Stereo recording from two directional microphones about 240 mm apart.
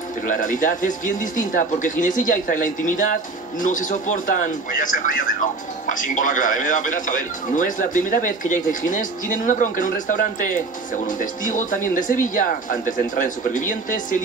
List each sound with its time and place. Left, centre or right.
0.3 s speech: left